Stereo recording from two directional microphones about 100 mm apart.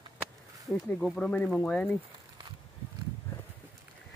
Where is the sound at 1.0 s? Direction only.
10° left (ahead or behind).